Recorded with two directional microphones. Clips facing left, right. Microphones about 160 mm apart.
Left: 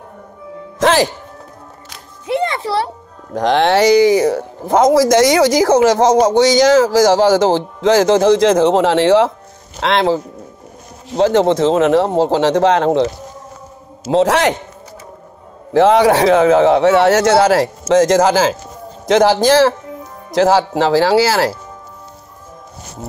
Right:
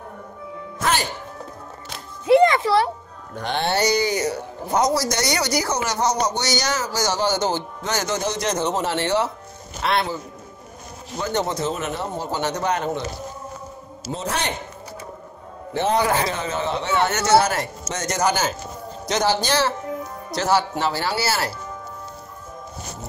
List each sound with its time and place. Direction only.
0.7 s music: 90° left
2.2 s a sound: 25° left (ahead or behind)
3.3 s speech: 90° left
14.1 s speech: 90° left
15.7 s speech: 90° left